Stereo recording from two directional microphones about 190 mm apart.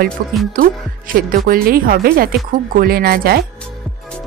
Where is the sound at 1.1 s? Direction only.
50° right (ahead or behind).